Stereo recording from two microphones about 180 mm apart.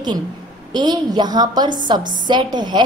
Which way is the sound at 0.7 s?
25° right (ahead or behind).